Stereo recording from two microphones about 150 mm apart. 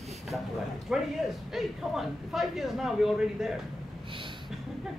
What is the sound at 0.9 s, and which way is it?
Speech, 5° right (ahead or behind).